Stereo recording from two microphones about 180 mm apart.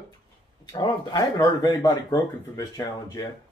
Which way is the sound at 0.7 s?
20° left (ahead or behind).